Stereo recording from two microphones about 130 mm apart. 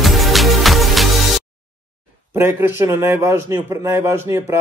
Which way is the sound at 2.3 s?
20° right (ahead or behind).